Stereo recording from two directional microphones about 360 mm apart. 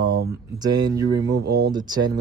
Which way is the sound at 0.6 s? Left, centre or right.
Centre.